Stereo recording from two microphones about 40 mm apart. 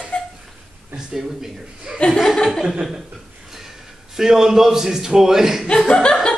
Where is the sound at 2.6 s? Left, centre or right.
Centre.